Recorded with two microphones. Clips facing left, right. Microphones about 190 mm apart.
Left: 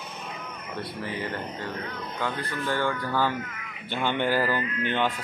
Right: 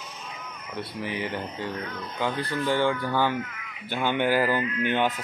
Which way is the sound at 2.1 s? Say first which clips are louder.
Right 4 dB; 20° right (ahead or behind).